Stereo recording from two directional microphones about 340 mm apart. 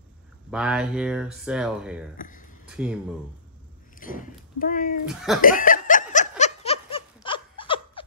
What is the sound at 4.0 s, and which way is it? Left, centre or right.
Speech, left.